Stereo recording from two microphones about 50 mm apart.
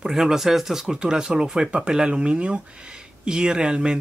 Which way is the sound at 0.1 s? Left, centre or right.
Centre.